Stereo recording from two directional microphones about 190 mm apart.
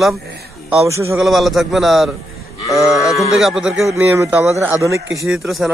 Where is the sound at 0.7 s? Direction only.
15° right (ahead or behind).